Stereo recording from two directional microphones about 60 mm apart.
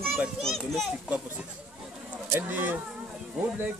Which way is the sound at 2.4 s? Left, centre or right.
Right.